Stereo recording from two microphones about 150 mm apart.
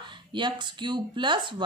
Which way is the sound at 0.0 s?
30° right (ahead or behind).